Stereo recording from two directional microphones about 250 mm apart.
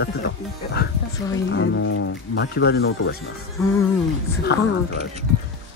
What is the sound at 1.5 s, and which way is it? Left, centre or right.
Speech, left.